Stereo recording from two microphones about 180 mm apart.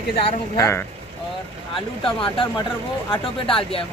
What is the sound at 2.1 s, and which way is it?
Speech, 30° left (ahead or behind).